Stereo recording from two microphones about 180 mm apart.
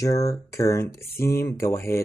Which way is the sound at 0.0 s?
15° left (ahead or behind).